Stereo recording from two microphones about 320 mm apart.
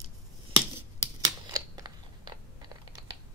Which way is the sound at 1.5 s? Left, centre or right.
Centre.